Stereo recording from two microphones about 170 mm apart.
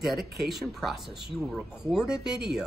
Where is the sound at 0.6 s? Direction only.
Centre (ahead or behind).